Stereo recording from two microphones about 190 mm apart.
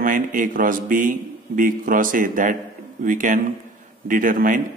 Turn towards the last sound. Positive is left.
turn(degrees=-45)  # may be behind; listen again after turning